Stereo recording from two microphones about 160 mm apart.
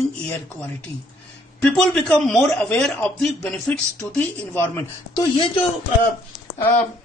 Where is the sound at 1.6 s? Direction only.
5° left (ahead or behind).